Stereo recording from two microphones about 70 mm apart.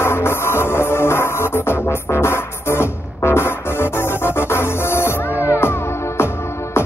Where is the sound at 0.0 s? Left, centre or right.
Left.